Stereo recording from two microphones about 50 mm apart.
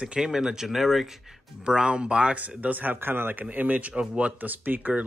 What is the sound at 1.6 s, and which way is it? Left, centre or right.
Speech, centre.